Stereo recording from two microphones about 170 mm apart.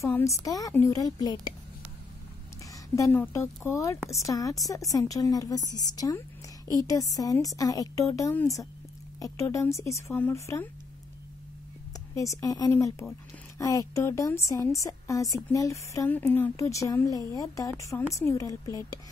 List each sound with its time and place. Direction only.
0.0 s a woman's voice: 20° left (ahead or behind)
3.0 s a woman's voice: 15° left (ahead or behind)
12.2 s a woman's voice: 20° left (ahead or behind)